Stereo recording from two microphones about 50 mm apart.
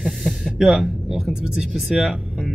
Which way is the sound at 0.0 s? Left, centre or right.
Centre.